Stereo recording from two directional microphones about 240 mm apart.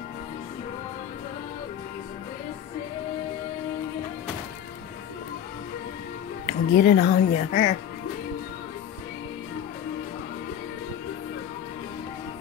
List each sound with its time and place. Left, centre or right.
6.4 s speech: left